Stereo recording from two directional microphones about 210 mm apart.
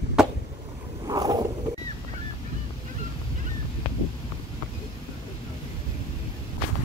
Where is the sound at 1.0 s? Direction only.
20° right (ahead or behind).